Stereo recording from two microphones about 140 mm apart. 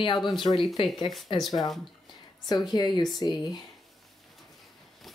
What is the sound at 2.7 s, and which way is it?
Speech, 30° left (ahead or behind).